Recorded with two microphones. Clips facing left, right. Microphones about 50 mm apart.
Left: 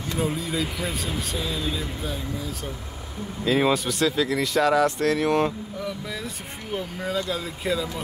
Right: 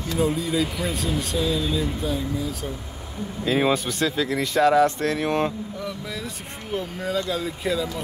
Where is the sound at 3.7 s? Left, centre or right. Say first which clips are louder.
Left 1 dB; right.